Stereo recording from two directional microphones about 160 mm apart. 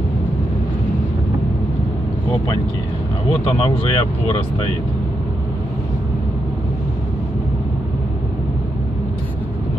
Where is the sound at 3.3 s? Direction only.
35° left (ahead or behind).